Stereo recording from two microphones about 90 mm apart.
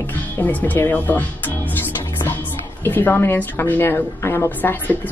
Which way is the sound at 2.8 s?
20° left (ahead or behind).